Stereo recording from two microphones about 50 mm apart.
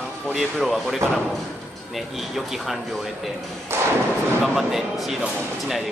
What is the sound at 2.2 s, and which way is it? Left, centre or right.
Speech, centre.